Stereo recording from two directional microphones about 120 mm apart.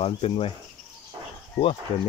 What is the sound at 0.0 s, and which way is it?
Speech, 50° left (ahead or behind).